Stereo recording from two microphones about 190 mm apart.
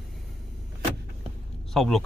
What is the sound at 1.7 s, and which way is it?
Speech, centre (ahead or behind).